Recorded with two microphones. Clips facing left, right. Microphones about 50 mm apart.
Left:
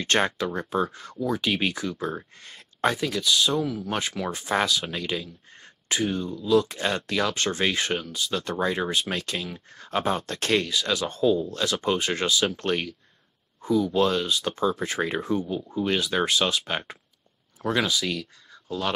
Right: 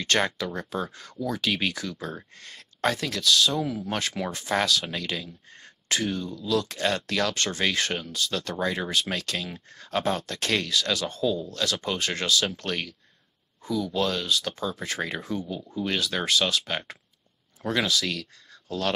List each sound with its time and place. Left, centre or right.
0.0 s speech: left
3.6 s speech: centre
4.3 s speech: centre
10.2 s speech: left; by 18.9 s centre